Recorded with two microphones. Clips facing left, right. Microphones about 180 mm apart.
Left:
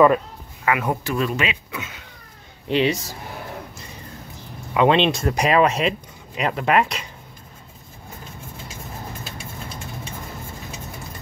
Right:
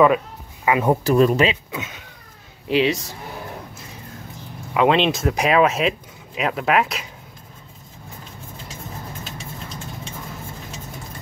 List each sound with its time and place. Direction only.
0.7 s speech: 30° right (ahead or behind)
1.7 s speech: 20° right (ahead or behind)
2.7 s speech: centre (ahead or behind)
4.7 s speech: centre (ahead or behind)